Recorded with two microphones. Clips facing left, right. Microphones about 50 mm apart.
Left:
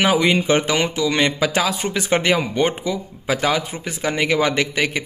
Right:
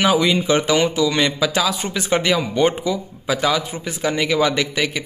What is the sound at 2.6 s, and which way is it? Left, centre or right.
Speech, left.